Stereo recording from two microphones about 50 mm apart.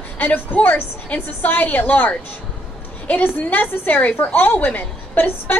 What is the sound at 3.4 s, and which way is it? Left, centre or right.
A woman's voice, left.